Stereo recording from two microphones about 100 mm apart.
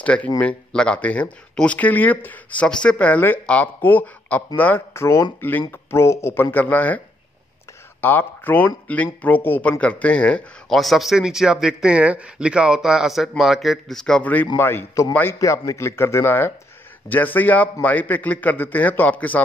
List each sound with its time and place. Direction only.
0.0 s speech: 15° left (ahead or behind)
8.0 s speech: 20° left (ahead or behind)
10.7 s speech: centre (ahead or behind)
14.2 s speech: 15° left (ahead or behind)